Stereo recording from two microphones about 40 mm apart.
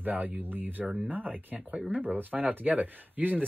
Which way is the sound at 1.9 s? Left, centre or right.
Right.